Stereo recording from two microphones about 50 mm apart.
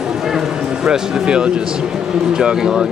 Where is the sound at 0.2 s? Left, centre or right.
Centre.